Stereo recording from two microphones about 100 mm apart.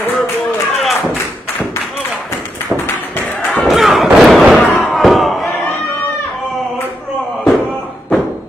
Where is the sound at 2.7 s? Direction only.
20° left (ahead or behind).